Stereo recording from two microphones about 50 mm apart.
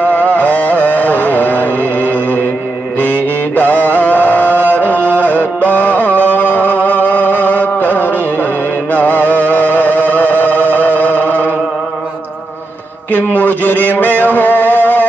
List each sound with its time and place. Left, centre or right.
0.0 s music: left
3.0 s mantra: left
5.2 s music: left
13.1 s music: left